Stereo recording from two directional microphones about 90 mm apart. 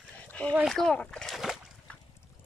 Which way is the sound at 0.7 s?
5° left (ahead or behind).